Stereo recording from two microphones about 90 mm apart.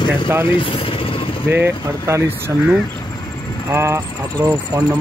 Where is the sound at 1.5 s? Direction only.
30° right (ahead or behind).